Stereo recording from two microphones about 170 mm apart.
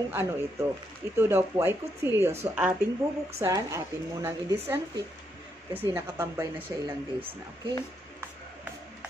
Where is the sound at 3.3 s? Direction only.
15° right (ahead or behind).